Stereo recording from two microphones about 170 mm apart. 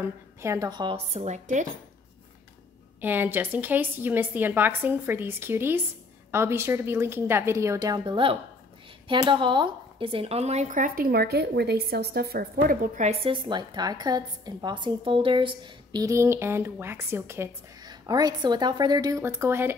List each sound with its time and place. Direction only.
0.0 s speech: 15° right (ahead or behind); by 1.7 s 45° right (ahead or behind)
3.0 s a woman's voice: 10° right (ahead or behind)